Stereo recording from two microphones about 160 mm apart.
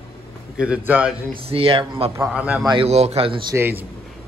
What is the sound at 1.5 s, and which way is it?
Speech, 35° right (ahead or behind).